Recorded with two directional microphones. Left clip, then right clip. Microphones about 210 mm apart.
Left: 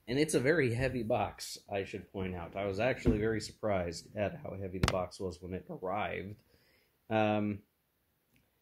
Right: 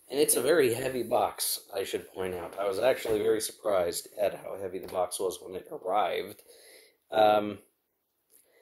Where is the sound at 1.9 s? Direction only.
25° right (ahead or behind).